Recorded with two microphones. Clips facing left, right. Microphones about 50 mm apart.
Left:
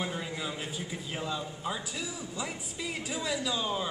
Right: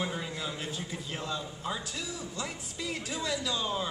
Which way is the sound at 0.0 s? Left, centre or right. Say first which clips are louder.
Even; centre.